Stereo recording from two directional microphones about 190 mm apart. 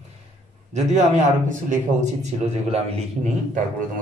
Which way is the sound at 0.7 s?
35° right (ahead or behind).